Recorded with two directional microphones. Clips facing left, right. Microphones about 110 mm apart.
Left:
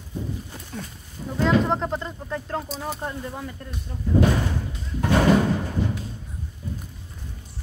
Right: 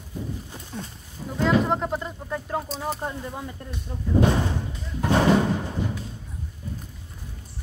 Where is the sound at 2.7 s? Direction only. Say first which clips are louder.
Right 1 dB; centre (ahead or behind).